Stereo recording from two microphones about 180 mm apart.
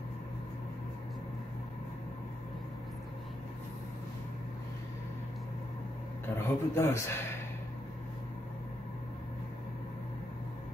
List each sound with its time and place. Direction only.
6.3 s a man's voice: 15° left (ahead or behind)